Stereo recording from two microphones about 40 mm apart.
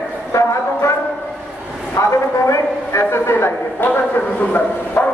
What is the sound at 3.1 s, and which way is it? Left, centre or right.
Speech, left.